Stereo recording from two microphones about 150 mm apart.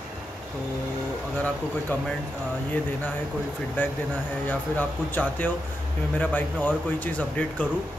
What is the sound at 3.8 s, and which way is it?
A man's voice, 10° left (ahead or behind).